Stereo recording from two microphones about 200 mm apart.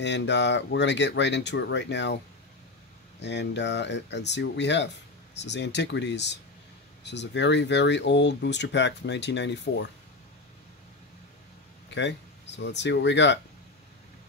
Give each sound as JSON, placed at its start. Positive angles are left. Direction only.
{"t": 0.0, "sound": "speech", "side_deg": 60}
{"t": 3.2, "sound": "speech", "side_deg": 60}
{"t": 11.9, "sound": "speech", "side_deg": 60}